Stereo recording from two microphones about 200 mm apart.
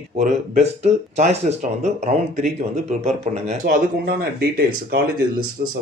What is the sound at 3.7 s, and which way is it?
Speech, 50° right (ahead or behind).